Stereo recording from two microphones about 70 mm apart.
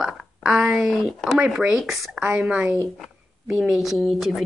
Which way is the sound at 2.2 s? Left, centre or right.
Centre.